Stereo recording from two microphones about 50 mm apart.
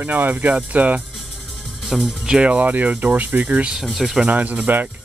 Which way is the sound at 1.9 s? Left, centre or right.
Centre.